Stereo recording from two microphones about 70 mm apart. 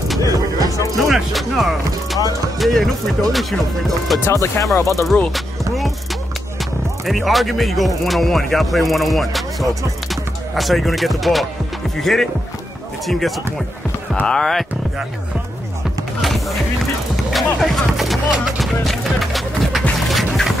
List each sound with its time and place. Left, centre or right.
0.2 s music: left
1.1 s speech: centre
4.3 s speech: left
5.3 s music: centre
6.6 s speech: centre
16.2 s music: centre